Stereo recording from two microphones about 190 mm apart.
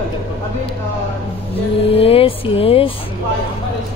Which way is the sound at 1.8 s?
30° left (ahead or behind).